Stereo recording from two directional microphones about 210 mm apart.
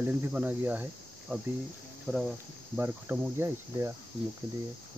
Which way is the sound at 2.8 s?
10° right (ahead or behind).